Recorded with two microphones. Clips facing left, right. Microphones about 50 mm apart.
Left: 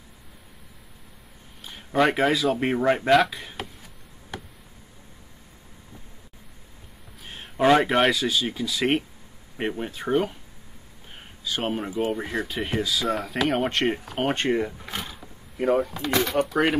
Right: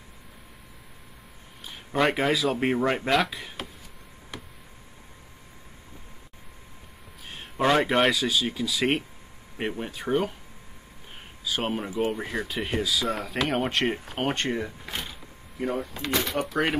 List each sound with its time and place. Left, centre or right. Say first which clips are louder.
1.6 s speech: left 3 dB; centre
7.2 s speech: left 4 dB; centre
11.4 s speech: left 1 dB; centre
14.9 s mechanisms: left 1 dB; centre
15.9 s speech: left 4 dB; left
16.3 s speech: left 4 dB; centre